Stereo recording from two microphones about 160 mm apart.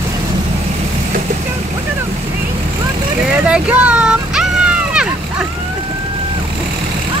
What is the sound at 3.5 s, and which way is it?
Child singing, 10° right (ahead or behind).